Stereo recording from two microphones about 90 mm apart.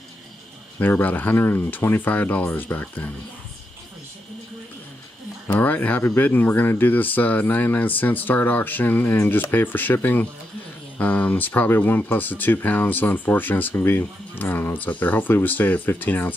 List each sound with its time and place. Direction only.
0.7 s speech: 20° left (ahead or behind)
5.5 s speech: 20° left (ahead or behind)